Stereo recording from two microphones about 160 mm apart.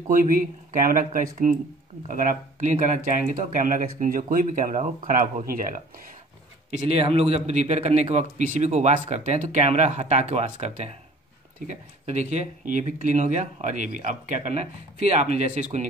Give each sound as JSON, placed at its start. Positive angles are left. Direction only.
{"t": 0.1, "sound": "speech", "side_deg": -60}
{"t": 6.9, "sound": "speech", "side_deg": -40}